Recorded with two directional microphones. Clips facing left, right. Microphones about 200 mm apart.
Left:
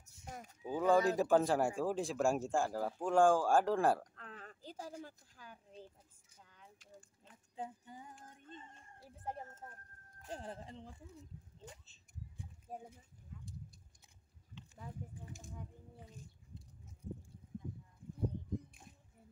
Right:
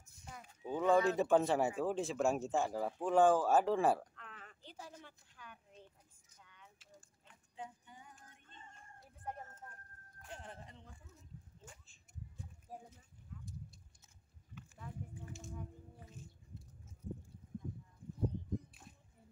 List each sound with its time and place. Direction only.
0.3 s a sound: 45° left (ahead or behind)
0.7 s speech: 5° left (ahead or behind)
4.1 s a sound: 35° left (ahead or behind)
9.0 s chicken: 25° left (ahead or behind)
10.2 s speech: 35° left (ahead or behind)
12.7 s speech: 25° left (ahead or behind)